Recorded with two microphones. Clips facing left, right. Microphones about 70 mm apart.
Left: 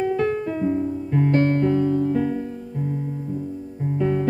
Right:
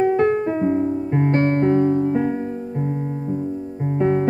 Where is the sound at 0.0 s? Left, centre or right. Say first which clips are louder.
Right 5 dB; right.